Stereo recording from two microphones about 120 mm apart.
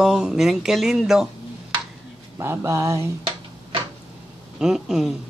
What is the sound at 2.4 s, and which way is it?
Speech, 20° right (ahead or behind).